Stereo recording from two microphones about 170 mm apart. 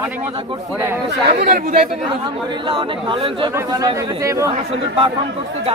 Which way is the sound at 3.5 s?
20° right (ahead or behind).